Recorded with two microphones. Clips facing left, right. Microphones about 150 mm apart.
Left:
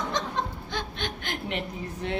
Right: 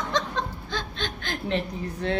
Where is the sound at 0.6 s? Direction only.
20° left (ahead or behind).